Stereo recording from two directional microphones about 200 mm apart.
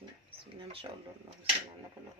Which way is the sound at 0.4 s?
25° right (ahead or behind).